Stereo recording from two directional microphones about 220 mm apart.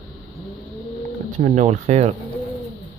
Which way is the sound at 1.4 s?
30° right (ahead or behind).